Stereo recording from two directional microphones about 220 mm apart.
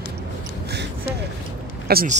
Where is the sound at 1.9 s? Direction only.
45° right (ahead or behind).